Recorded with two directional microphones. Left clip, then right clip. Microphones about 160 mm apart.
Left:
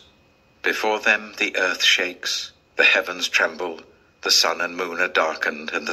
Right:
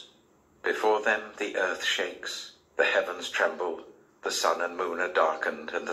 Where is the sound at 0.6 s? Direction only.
40° left (ahead or behind).